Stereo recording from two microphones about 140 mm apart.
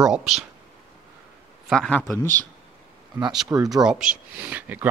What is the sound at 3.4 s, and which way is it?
Speech, 25° right (ahead or behind).